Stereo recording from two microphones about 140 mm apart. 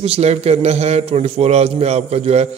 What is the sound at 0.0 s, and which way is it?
A man's voice, 45° right (ahead or behind).